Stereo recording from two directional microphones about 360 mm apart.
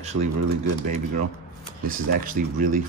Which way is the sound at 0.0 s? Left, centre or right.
Centre.